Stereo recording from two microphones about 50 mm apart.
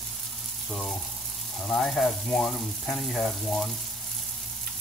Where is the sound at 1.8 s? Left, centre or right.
Centre.